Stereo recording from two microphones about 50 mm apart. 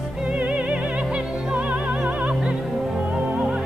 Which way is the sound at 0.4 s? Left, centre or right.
Right.